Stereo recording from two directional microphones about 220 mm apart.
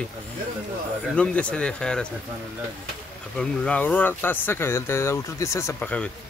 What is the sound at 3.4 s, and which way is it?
Speech, 5° left (ahead or behind).